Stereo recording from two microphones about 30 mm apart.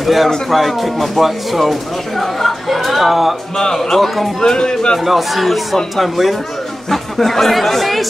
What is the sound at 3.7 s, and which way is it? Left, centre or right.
Speech, centre.